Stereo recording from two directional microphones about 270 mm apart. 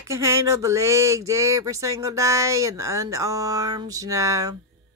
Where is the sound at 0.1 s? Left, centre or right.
Centre.